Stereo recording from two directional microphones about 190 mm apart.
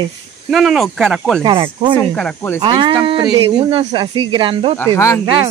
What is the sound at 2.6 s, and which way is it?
Speech, 25° right (ahead or behind).